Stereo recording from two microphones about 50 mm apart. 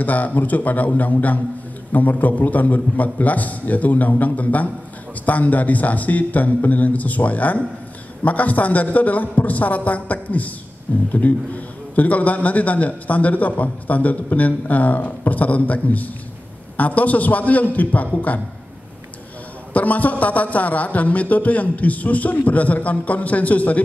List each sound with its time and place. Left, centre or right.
0.0 s a man's voice: left
19.7 s a man's voice: left